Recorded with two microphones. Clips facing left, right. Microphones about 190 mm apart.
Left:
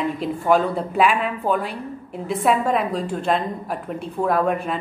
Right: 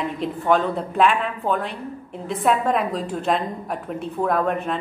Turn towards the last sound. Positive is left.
turn(degrees=5)  # may be behind; listen again after turning